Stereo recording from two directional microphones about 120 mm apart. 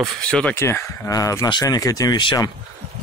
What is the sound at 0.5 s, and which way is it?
Speech, 25° left (ahead or behind).